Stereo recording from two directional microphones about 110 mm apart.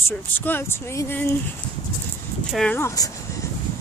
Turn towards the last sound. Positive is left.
turn(degrees=30)  # may be behind; listen again after turning